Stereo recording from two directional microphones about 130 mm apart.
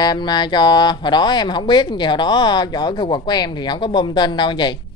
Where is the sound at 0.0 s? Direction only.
35° left (ahead or behind).